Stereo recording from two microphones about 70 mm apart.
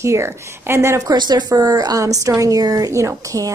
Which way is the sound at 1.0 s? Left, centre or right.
Right.